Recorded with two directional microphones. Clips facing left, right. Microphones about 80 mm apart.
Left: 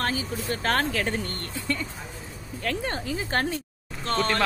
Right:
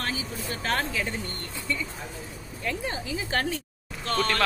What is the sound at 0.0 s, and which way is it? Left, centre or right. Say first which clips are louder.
Vehicle: left 4 dB; left.